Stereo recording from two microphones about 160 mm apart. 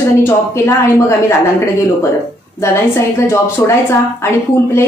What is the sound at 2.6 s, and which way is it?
A woman's voice, 15° left (ahead or behind).